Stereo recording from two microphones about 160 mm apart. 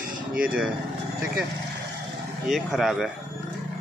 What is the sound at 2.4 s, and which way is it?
Speech, centre (ahead or behind).